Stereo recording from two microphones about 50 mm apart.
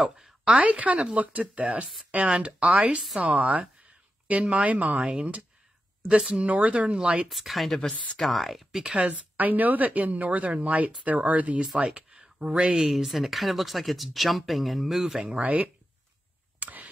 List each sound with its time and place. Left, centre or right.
0.0 s a woman's voice: right
6.4 s speech: right
7.2 s speech: centre
9.4 s a woman's voice: right
12.7 s speech: centre
15.2 s speech: right
16.5 s a sound: right